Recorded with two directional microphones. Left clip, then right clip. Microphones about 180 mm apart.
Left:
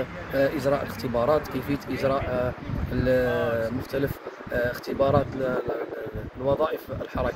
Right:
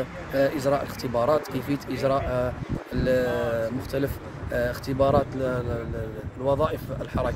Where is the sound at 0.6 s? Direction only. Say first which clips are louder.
Even; 15° right (ahead or behind).